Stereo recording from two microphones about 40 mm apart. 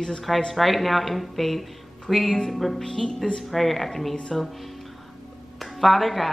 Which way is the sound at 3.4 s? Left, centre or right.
Centre.